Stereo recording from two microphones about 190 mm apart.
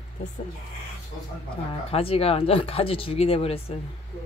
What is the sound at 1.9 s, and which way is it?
Speech, 30° left (ahead or behind).